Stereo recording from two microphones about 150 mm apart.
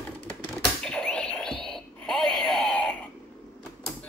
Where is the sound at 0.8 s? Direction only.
5° left (ahead or behind).